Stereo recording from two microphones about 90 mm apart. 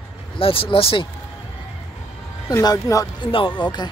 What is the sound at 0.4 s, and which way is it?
Speech, 85° left.